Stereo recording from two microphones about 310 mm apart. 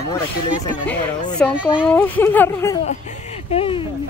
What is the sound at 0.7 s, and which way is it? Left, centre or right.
Speech, centre.